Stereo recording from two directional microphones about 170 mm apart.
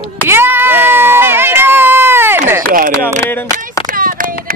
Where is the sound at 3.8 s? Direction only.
55° right (ahead or behind).